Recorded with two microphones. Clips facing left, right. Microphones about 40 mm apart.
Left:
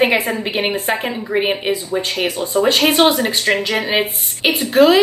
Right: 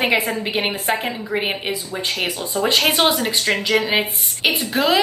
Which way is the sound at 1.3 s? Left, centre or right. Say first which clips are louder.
Left 6 dB; centre.